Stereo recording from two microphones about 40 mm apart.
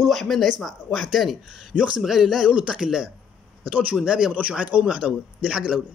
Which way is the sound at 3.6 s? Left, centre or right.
Right.